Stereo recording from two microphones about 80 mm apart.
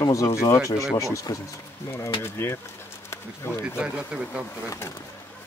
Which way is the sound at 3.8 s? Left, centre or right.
Centre.